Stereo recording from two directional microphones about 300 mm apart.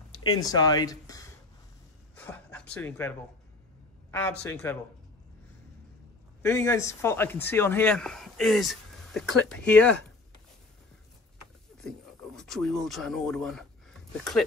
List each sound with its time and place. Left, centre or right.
0.4 s speech: centre
2.1 s a sound: centre
2.7 s speech: centre
6.4 s speech: centre
12.4 s speech: centre